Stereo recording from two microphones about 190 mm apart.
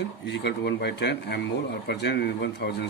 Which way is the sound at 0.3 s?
65° left (ahead or behind).